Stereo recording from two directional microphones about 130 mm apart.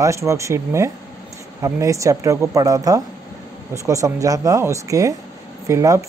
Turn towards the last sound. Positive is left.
turn(degrees=-25)  # may be behind; listen again after turning